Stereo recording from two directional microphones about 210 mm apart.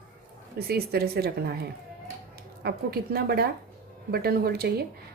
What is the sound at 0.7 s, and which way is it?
A woman's voice, 50° right (ahead or behind).